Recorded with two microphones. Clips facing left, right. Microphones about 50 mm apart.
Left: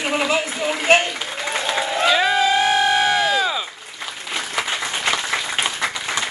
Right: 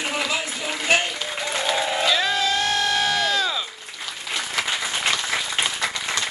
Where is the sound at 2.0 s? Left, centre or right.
Centre.